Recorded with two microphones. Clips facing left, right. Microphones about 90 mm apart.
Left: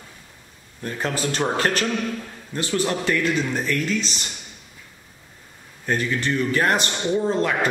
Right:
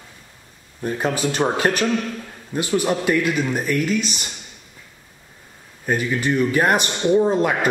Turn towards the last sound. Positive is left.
turn(degrees=-15)  # may be behind; listen again after turning